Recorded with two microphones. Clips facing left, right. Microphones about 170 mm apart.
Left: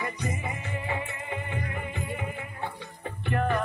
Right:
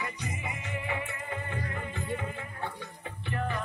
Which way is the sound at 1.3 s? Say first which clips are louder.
Left 3 dB; 15° left (ahead or behind).